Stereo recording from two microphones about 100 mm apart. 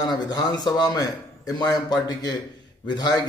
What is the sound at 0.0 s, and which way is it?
A man's voice, 40° left (ahead or behind).